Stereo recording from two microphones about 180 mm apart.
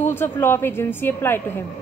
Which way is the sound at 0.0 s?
10° left (ahead or behind).